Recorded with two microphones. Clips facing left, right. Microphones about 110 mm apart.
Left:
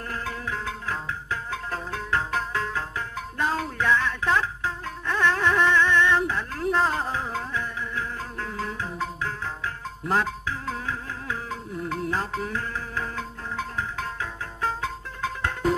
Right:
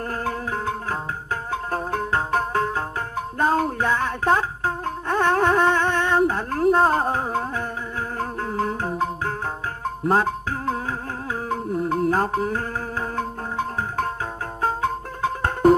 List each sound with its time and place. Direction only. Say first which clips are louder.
0.1 s music: right 3 dB; 45° right (ahead or behind)